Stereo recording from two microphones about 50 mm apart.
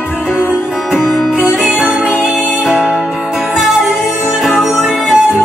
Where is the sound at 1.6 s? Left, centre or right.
Right.